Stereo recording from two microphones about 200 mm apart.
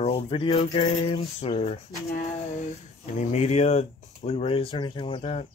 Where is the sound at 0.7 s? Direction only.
30° left (ahead or behind).